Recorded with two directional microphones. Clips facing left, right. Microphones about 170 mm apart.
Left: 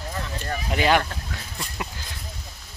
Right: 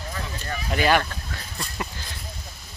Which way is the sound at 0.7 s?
20° left (ahead or behind).